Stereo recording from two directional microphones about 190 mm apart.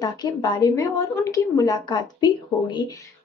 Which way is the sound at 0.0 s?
20° left (ahead or behind).